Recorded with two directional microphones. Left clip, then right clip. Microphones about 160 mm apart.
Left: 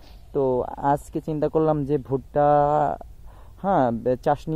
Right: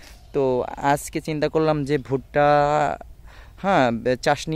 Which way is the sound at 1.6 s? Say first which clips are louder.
Right 1 dB; 15° right (ahead or behind).